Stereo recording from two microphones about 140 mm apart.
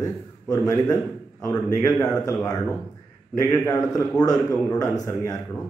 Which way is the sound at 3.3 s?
20° left (ahead or behind).